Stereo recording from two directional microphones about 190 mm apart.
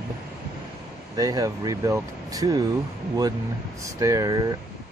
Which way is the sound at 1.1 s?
20° right (ahead or behind).